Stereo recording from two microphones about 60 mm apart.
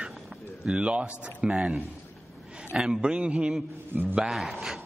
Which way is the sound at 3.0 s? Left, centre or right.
Centre.